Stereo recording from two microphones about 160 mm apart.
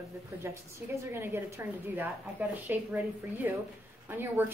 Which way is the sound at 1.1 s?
15° right (ahead or behind).